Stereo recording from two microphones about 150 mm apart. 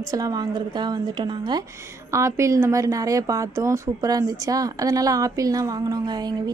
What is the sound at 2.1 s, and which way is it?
Speech, 20° right (ahead or behind).